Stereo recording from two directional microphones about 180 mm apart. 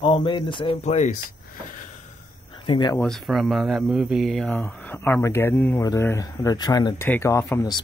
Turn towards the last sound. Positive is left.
turn(degrees=15)  # may be behind; listen again after turning